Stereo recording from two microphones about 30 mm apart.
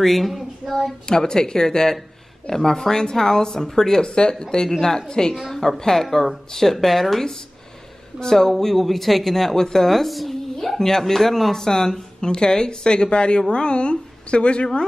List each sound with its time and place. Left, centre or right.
0.0 s a sound: centre
1.0 s speech: left
4.0 s speech: left
9.8 s speech: centre
10.8 s a woman's voice: centre; by 14.8 s left